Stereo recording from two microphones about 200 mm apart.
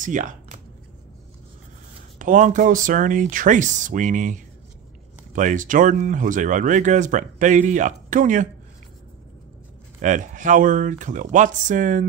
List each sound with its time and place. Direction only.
0.0 s speech: 40° right (ahead or behind)
2.1 s speech: 40° right (ahead or behind)
10.0 s speech: 40° right (ahead or behind)